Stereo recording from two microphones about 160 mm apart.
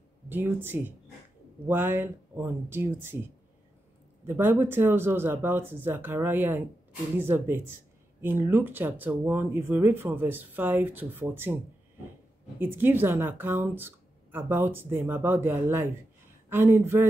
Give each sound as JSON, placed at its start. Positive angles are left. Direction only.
{"t": 0.3, "sound": "speech", "side_deg": -15}
{"t": 4.3, "sound": "speech", "side_deg": -15}
{"t": 12.5, "sound": "speech", "side_deg": -15}